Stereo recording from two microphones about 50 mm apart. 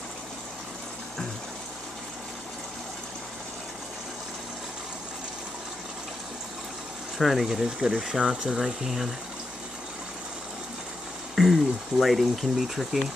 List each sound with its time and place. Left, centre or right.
7.2 s speech: centre
11.3 s speech: centre